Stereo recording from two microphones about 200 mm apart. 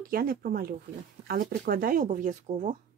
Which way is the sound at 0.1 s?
45° right (ahead or behind).